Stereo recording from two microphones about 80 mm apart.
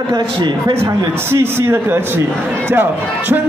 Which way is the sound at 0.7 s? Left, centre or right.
Right.